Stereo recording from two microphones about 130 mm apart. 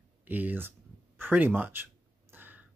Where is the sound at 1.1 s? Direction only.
15° right (ahead or behind).